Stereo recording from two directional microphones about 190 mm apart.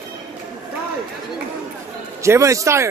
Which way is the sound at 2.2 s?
15° right (ahead or behind).